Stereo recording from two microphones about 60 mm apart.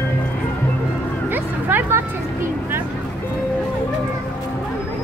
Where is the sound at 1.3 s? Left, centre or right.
Right.